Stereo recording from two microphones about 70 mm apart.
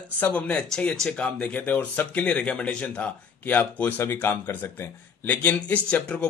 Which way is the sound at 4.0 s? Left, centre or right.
Left.